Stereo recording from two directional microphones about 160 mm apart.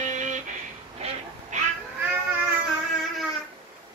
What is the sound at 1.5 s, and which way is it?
Cat, 50° right (ahead or behind).